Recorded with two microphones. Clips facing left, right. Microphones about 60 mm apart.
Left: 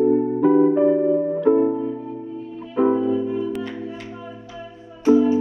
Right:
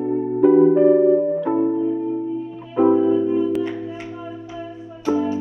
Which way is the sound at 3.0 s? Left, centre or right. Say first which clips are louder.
Right 4 dB; right.